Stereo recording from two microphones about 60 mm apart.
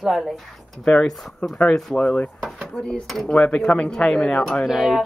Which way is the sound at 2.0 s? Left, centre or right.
Left.